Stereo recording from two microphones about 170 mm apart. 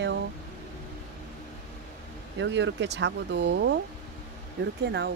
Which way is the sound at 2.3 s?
90° right.